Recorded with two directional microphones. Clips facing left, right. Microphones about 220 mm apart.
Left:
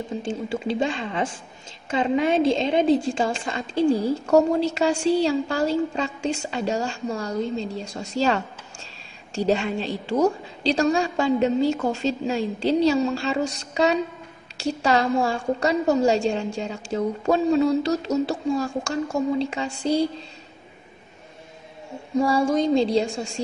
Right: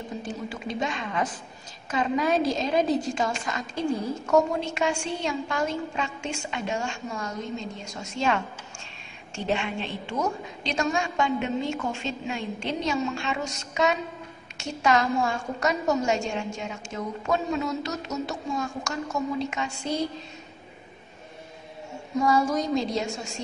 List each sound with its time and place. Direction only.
0.2 s a woman's voice: 30° left (ahead or behind)
22.2 s a woman's voice: 30° left (ahead or behind)